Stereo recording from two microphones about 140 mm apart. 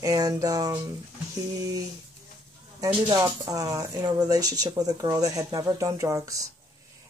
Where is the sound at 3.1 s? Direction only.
25° right (ahead or behind).